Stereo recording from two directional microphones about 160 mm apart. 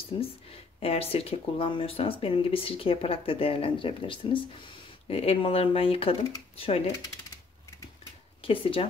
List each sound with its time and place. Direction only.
0.7 s speech: 40° left (ahead or behind)
8.4 s speech: 35° left (ahead or behind)